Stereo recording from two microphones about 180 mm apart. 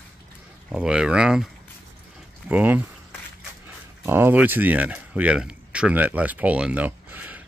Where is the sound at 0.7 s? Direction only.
5° right (ahead or behind).